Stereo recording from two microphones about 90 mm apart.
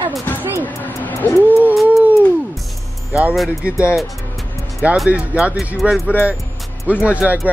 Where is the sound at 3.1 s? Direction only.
15° right (ahead or behind).